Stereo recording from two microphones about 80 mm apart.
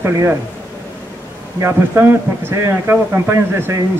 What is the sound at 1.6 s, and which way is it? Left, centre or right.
Speech, right.